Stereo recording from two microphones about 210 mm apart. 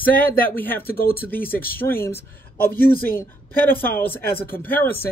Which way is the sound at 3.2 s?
10° left (ahead or behind).